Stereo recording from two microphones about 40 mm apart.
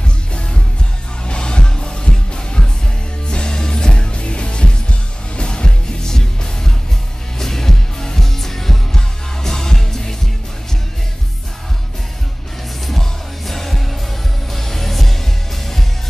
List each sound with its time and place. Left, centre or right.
0.3 s music: left
13.5 s music: centre